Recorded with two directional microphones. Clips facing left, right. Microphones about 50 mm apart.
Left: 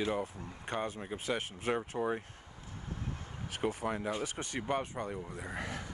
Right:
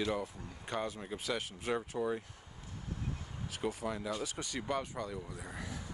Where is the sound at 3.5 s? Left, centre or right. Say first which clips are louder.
Left 3 dB; left.